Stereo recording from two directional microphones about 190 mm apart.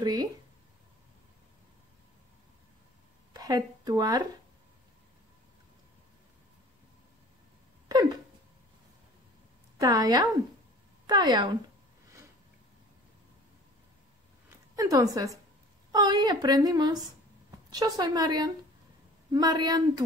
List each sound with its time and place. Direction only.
0.0 s speech: 20° right (ahead or behind)
3.3 s speech: 20° right (ahead or behind)
7.9 s a sound: 20° right (ahead or behind)
9.8 s speech: 20° right (ahead or behind)
14.8 s a woman's voice: 20° right (ahead or behind)